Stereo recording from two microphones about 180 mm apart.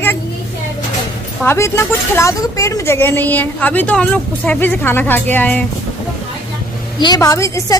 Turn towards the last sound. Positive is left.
turn(degrees=20)  # may be behind; listen again after turning